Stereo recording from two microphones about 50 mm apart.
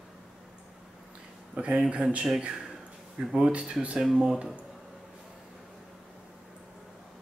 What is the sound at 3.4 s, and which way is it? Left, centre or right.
Speech, right.